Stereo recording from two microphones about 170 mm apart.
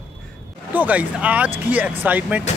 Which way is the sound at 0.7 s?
10° right (ahead or behind).